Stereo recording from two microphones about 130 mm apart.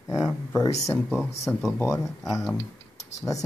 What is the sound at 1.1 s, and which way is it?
Speech, centre (ahead or behind).